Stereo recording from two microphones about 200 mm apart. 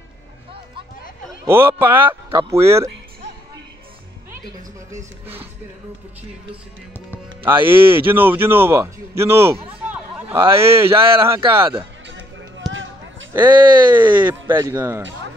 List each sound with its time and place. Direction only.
1.4 s speech: 10° right (ahead or behind)
4.9 s speech: 30° right (ahead or behind)
7.1 s a man's voice: 10° right (ahead or behind)
12.6 s a sound: centre (ahead or behind)
13.3 s speech: 20° right (ahead or behind)
14.2 s speech: 15° right (ahead or behind)